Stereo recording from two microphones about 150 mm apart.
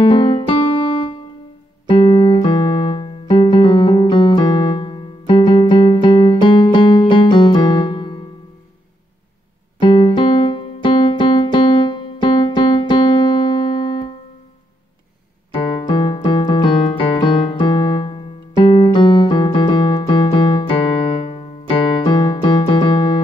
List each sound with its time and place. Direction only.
0.0 s keyboard: 35° left (ahead or behind)
9.8 s keyboard: 30° left (ahead or behind)
15.5 s keyboard: 30° left (ahead or behind)